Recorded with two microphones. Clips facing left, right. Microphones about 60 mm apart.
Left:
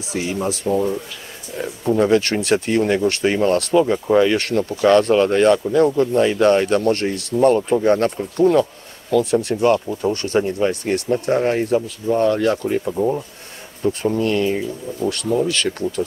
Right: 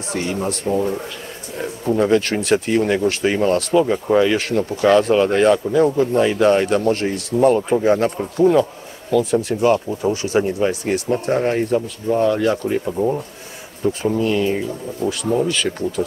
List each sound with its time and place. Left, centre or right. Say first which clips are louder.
0.1 s speech: even; centre
15.0 s speech: even; right
15.5 s speech: even; centre